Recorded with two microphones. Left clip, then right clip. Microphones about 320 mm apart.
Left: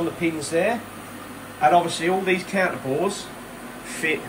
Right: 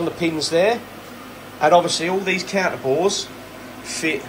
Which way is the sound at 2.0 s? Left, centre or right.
Centre.